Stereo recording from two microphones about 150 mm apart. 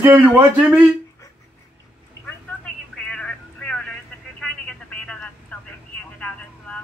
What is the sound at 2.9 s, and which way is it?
Telephone, 5° left (ahead or behind).